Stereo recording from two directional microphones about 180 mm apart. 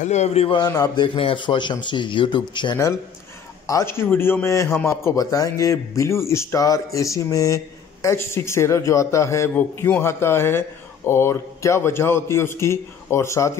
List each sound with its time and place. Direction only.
0.0 s a man's voice: 40° left (ahead or behind)
0.6 s a man's voice: 20° left (ahead or behind)